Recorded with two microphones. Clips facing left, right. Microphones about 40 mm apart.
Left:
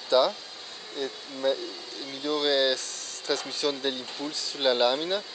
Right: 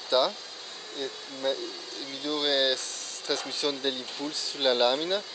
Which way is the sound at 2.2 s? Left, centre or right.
Centre.